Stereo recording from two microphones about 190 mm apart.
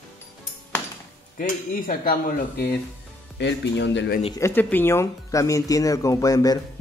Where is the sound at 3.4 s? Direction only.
65° left (ahead or behind).